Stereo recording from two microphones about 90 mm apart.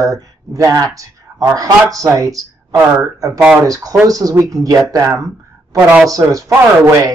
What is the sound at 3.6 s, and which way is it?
Speech, 40° right (ahead or behind).